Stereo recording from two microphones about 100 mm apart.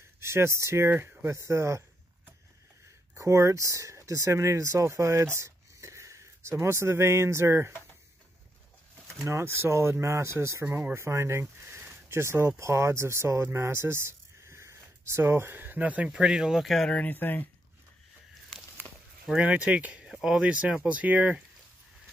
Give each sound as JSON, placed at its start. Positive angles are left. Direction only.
{"t": 0.2, "sound": "speech", "side_deg": -25}
{"t": 9.2, "sound": "speech", "side_deg": -25}
{"t": 16.9, "sound": "speech", "side_deg": 15}
{"t": 19.2, "sound": "speech", "side_deg": -10}